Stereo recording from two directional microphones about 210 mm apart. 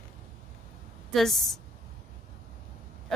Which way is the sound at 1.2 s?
Centre (ahead or behind).